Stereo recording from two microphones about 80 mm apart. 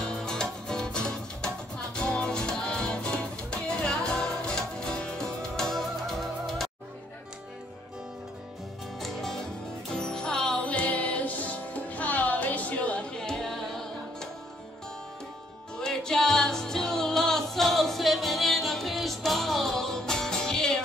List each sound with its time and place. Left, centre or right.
0.0 s music: centre
9.0 s music: centre
13.2 s music: centre
15.8 s music: centre